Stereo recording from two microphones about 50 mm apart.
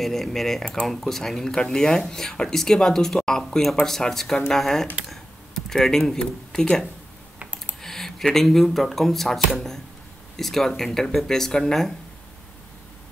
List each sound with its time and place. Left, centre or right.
0.0 s speech: centre
5.1 s a sound: centre
7.8 s speech: centre